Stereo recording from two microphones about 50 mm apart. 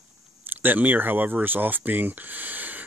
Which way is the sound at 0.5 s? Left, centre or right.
Right.